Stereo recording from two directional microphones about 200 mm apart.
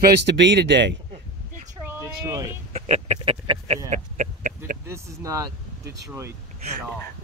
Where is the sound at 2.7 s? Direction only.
35° right (ahead or behind).